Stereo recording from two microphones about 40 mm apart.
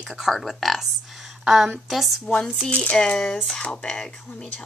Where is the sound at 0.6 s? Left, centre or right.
Centre.